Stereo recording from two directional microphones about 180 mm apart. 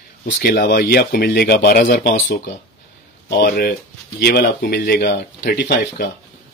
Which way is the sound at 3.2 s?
60° left (ahead or behind).